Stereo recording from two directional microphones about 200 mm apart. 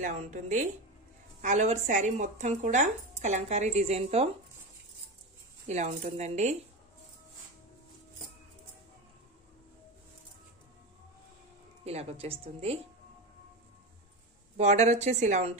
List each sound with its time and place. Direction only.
0.0 s speech: 35° right (ahead or behind)
5.7 s speech: 35° right (ahead or behind)
11.8 s speech: 30° right (ahead or behind)
14.6 s speech: 35° right (ahead or behind)